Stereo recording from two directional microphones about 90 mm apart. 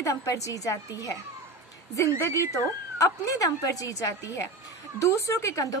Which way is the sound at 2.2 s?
30° left (ahead or behind).